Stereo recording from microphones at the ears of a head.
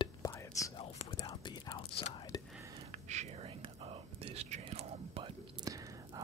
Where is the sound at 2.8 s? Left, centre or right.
Right.